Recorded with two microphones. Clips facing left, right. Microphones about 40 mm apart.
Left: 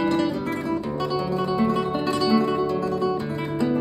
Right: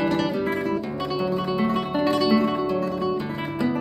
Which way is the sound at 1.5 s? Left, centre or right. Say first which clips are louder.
Left 1 dB; right.